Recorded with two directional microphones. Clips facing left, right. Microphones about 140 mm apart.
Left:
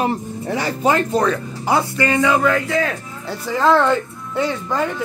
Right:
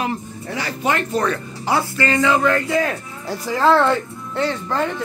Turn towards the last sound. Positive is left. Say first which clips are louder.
# left 1 dB
turn(degrees=5)  # may be behind; listen again after turning